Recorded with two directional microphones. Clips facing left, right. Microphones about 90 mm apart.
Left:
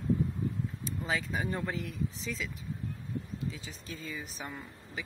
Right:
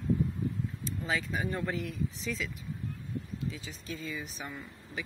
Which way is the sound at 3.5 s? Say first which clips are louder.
Right 2 dB; 30° left (ahead or behind).